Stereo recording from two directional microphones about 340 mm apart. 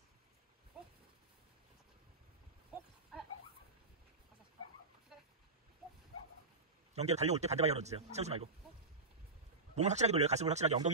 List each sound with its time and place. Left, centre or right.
7.0 s a man's voice: centre
9.8 s a man's voice: centre